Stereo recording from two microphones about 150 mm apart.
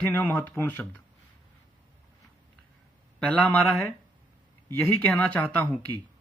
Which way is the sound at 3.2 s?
10° left (ahead or behind).